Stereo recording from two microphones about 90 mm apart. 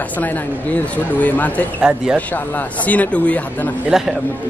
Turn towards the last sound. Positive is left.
turn(degrees=-5)  # may be behind; listen again after turning